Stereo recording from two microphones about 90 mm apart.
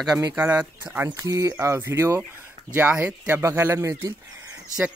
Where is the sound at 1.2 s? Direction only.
40° right (ahead or behind).